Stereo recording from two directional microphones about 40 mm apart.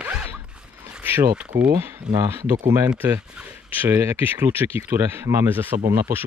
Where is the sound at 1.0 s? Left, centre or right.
Right.